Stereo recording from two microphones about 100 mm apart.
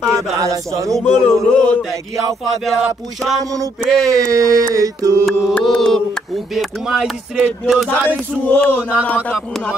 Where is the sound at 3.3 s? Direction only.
35° right (ahead or behind).